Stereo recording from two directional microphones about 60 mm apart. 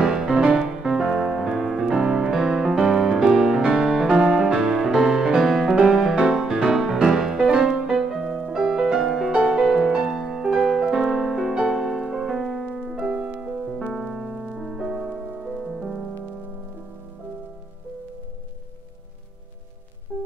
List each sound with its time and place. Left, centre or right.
0.0 s music: centre
9.3 s music: right
10.1 s music: centre
13.0 s music: centre
20.1 s music: right